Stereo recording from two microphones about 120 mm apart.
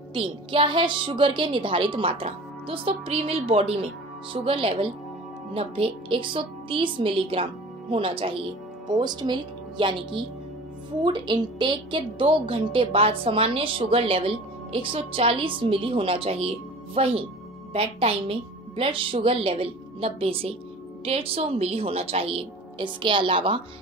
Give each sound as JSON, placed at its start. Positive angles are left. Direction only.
{"t": 0.1, "sound": "a woman's voice", "side_deg": -45}
{"t": 11.0, "sound": "a woman's voice", "side_deg": -40}